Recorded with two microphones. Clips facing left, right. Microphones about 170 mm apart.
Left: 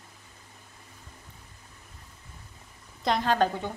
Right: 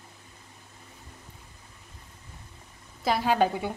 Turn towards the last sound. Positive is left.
turn(degrees=-10)  # may be behind; listen again after turning